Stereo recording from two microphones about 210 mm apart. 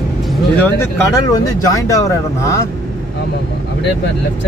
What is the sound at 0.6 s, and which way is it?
Speech, 15° left (ahead or behind).